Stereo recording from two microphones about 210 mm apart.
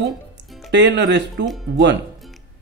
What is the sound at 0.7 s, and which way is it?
Speech, 55° right (ahead or behind).